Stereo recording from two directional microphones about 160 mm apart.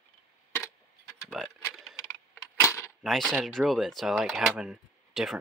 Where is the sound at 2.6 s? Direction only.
20° left (ahead or behind).